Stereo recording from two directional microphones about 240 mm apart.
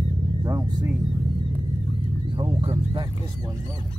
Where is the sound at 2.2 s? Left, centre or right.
Right.